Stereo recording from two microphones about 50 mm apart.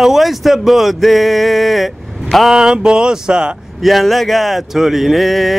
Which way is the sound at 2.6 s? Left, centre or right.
Centre.